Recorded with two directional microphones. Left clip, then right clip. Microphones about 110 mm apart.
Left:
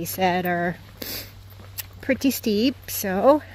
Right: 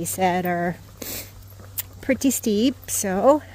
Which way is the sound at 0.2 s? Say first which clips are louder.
Even; 15° right (ahead or behind).